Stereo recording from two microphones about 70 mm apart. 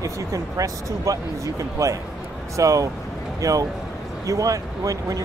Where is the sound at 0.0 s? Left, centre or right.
Right.